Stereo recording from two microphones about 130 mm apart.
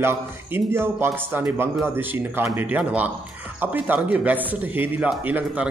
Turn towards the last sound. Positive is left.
turn(degrees=-10)  # may be behind; listen again after turning